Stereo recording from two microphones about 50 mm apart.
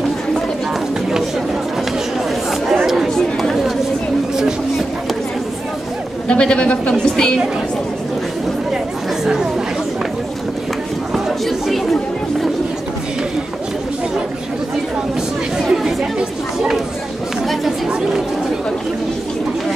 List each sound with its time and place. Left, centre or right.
3.2 s chatter: centre
6.2 s a woman's voice: centre
9.2 s chatter: centre
11.2 s chatter: centre
15.7 s chatter: centre